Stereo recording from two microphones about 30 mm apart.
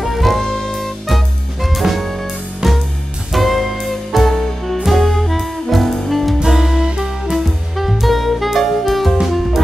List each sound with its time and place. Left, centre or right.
0.0 s music: centre
2.6 s music: centre
3.3 s music: centre
6.4 s music: centre
7.3 s music: centre
9.2 s music: centre